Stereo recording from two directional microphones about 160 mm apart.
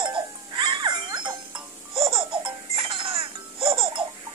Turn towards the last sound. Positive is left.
turn(degrees=-35)  # may be behind; listen again after turning